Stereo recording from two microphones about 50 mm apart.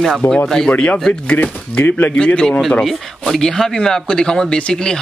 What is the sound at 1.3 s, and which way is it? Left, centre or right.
Speech, left.